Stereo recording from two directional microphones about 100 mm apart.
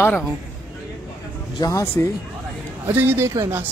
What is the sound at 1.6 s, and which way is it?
Speech, 30° left (ahead or behind).